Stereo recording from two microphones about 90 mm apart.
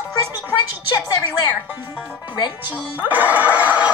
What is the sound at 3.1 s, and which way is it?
Neigh, 20° right (ahead or behind).